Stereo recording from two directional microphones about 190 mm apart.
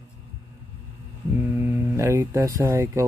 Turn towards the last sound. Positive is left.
turn(degrees=-15)  # may be behind; listen again after turning